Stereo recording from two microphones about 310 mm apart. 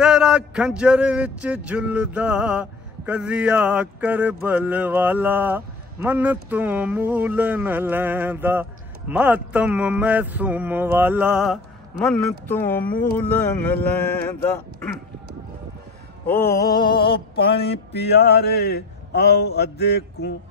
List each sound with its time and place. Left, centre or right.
0.0 s a sound: centre
16.3 s mantra: centre
18.0 s speech: left